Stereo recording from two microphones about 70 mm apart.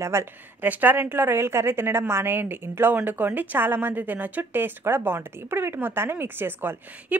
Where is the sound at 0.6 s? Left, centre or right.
Right.